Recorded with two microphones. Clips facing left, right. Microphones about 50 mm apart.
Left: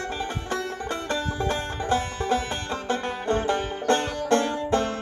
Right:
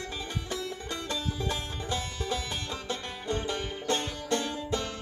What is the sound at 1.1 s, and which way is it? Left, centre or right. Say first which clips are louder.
Music: left 6 dB; left.